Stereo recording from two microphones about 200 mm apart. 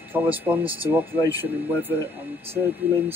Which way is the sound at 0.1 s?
10° right (ahead or behind).